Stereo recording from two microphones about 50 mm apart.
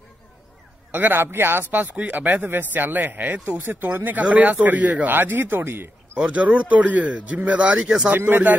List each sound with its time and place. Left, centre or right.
0.9 s speech: right
1.8 s a man's voice: right
4.2 s a man's voice: right
6.1 s speech: right
7.7 s speech: centre
8.1 s a man's voice: right